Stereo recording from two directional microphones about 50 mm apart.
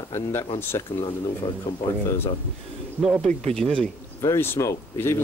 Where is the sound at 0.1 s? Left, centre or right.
Left.